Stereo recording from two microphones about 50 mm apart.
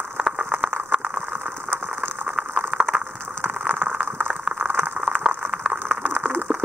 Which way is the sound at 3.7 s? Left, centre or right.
Right.